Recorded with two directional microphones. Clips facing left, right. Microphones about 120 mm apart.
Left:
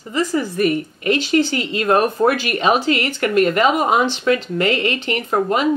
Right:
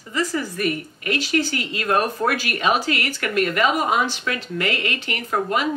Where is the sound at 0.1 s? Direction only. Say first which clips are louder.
Left 4 dB; 20° left (ahead or behind).